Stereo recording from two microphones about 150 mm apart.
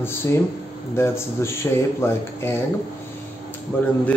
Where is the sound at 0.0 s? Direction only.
15° left (ahead or behind).